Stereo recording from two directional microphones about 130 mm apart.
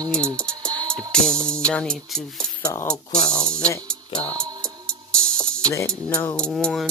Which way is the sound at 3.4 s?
5° left (ahead or behind).